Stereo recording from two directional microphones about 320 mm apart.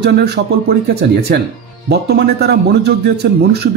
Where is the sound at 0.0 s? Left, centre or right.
Right.